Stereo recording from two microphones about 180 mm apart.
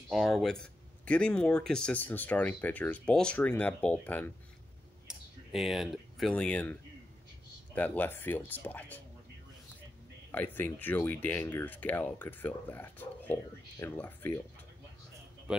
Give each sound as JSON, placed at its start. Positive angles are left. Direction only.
{"t": 0.1, "sound": "speech", "side_deg": 0}
{"t": 5.0, "sound": "speech", "side_deg": 0}
{"t": 10.3, "sound": "speech", "side_deg": 10}